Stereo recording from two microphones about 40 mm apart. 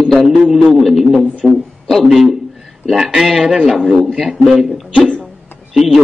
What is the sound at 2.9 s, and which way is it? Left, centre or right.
A man's voice, centre.